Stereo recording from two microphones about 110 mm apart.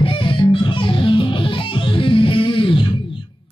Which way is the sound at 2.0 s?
50° left (ahead or behind).